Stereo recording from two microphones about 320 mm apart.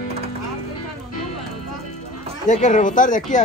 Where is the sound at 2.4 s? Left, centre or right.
Left.